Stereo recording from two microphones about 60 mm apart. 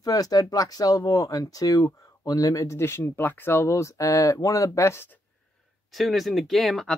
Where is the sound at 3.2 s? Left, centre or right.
Left.